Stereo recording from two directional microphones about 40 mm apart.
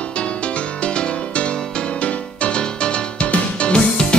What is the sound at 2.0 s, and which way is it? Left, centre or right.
Music, left.